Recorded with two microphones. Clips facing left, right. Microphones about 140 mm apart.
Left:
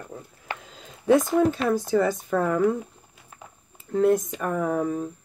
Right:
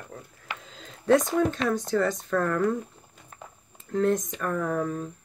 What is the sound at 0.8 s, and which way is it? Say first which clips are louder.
Speech: left 2 dB; 5° left (ahead or behind).